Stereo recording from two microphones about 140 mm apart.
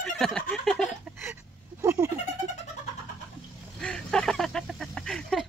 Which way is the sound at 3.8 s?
5° left (ahead or behind).